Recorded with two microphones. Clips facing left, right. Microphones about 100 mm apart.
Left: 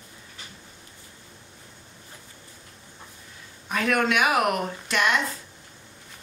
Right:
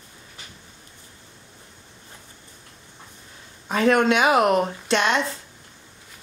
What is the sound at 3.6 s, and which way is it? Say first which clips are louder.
Speech: right 5 dB; 25° right (ahead or behind).